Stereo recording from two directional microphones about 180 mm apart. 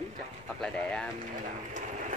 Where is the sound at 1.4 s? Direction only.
45° right (ahead or behind).